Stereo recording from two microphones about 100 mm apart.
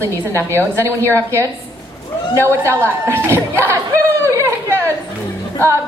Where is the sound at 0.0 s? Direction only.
30° right (ahead or behind).